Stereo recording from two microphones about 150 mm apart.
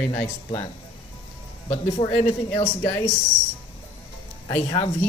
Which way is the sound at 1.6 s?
40° left (ahead or behind).